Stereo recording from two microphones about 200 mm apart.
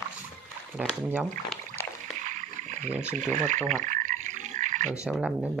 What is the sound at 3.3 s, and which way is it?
Frog, 35° right (ahead or behind).